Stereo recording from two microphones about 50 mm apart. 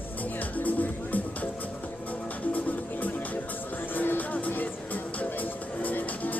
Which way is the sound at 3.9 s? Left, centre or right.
Left.